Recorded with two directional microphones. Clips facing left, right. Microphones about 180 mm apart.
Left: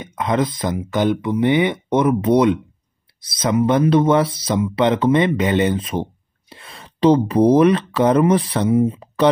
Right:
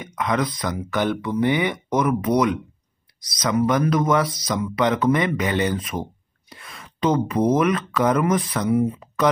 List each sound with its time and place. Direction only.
0.0 s speech: 25° left (ahead or behind)